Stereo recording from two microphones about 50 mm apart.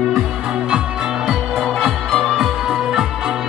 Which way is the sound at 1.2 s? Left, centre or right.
Centre.